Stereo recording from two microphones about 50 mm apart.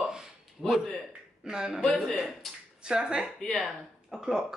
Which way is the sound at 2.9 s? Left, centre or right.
Centre.